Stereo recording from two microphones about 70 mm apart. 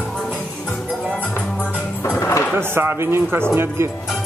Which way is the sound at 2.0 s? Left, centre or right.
Left.